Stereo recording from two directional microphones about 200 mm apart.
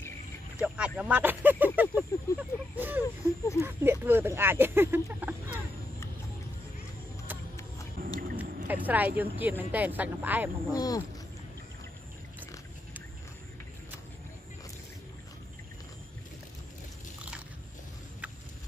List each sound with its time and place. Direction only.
0.6 s speech: 5° right (ahead or behind)
1.8 s a sound: 10° right (ahead or behind)
3.0 s speech: 15° left (ahead or behind)
3.6 s speech: 10° right (ahead or behind)
8.0 s whale vocalization: 45° right (ahead or behind)
8.6 s speech: 10° right (ahead or behind)
10.7 s speech: 20° left (ahead or behind)